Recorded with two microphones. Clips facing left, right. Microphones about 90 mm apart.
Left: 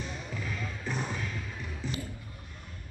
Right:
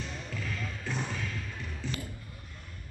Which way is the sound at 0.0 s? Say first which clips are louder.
Left 1 dB; 10° left (ahead or behind).